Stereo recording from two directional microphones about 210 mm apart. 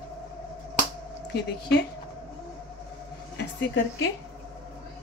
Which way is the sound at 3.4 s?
55° left (ahead or behind).